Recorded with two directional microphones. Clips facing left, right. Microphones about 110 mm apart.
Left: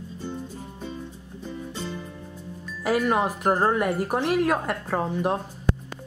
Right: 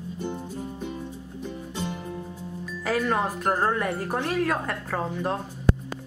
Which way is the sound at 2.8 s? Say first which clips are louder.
Left 3 dB; 10° left (ahead or behind).